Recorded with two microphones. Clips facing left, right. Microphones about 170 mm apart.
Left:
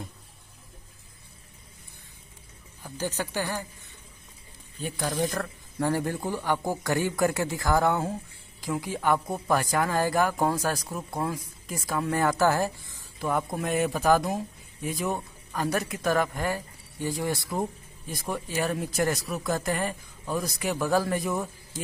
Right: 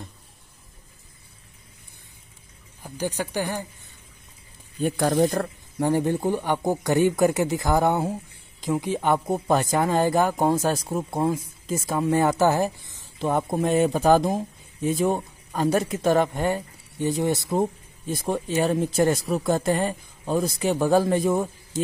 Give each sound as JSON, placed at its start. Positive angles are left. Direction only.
{"t": 2.8, "sound": "speech", "side_deg": -15}
{"t": 4.8, "sound": "speech", "side_deg": -50}
{"t": 5.2, "sound": "speech", "side_deg": -30}
{"t": 5.8, "sound": "speech", "side_deg": -20}